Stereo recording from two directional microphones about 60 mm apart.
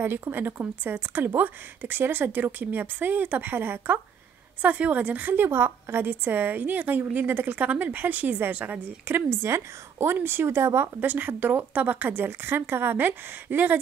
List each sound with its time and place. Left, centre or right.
0.3 s a woman's voice: right
11.0 s a woman's voice: right